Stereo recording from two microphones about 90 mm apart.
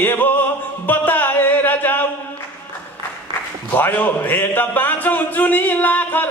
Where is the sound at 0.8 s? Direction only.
20° left (ahead or behind).